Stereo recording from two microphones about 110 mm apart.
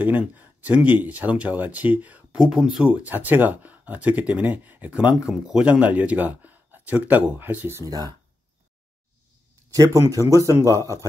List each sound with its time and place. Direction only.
0.0 s speech: 15° right (ahead or behind)
7.9 s speech: 40° right (ahead or behind)
9.7 s speech: 30° right (ahead or behind)